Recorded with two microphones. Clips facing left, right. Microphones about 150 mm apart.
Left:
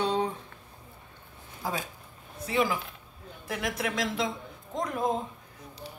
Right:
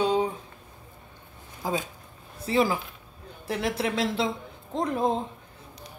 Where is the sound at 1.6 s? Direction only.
20° right (ahead or behind).